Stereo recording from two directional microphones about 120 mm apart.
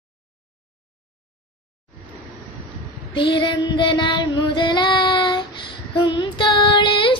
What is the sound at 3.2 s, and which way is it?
Child singing, 40° left (ahead or behind).